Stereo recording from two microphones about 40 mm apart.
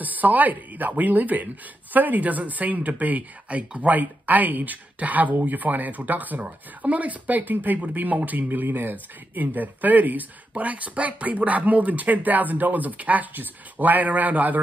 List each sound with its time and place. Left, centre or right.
0.0 s speech: right